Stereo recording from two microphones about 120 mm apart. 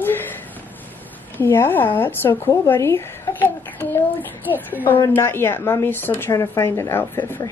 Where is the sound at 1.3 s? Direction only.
15° left (ahead or behind).